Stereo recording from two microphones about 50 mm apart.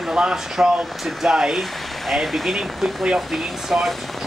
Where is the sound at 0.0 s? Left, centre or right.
Centre.